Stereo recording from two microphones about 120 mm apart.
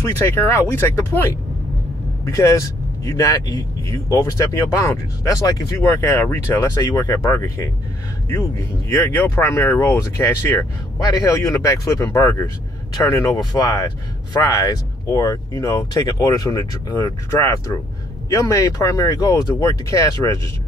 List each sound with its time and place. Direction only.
0.2 s speech: 25° left (ahead or behind)